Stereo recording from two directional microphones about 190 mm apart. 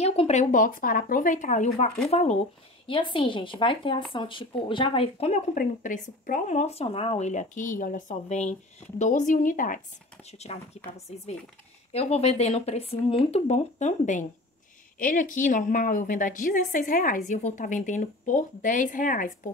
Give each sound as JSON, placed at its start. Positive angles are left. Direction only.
{"t": 0.0, "sound": "speech", "side_deg": 30}
{"t": 10.5, "sound": "speech", "side_deg": 30}
{"t": 11.9, "sound": "a woman's voice", "side_deg": 35}